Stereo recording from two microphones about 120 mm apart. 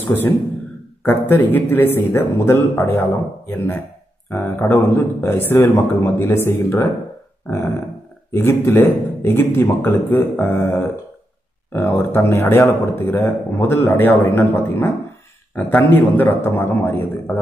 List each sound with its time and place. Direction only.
0.0 s a man's voice: 20° left (ahead or behind)
8.3 s a man's voice: 20° left (ahead or behind)